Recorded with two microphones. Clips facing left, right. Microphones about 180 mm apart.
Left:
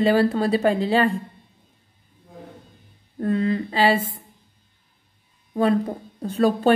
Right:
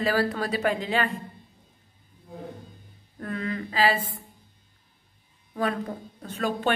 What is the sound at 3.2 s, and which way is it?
Speech, 30° left (ahead or behind).